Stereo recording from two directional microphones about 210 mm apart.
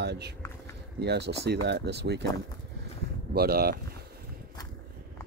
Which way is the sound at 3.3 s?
45° right (ahead or behind).